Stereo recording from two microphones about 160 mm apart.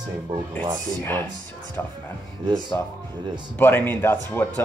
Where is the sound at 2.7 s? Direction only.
15° left (ahead or behind).